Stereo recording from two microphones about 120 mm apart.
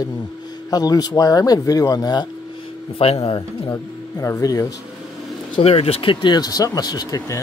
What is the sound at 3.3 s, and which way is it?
Speech, 40° left (ahead or behind).